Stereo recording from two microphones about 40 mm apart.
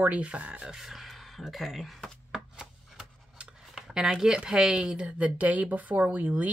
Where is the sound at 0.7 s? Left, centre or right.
Centre.